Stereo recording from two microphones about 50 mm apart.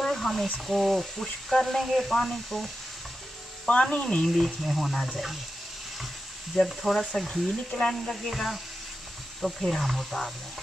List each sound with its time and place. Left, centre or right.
0.1 s a sound: centre
0.7 s speech: centre
3.6 s speech: left
4.6 s speech: centre
6.5 s speech: centre